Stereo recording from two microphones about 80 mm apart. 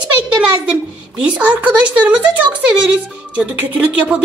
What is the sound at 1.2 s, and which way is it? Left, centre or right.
A woman's voice, centre.